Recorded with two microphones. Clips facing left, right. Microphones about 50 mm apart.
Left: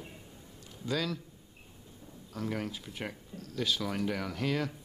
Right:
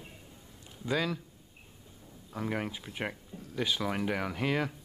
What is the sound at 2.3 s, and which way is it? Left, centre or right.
Speech, centre.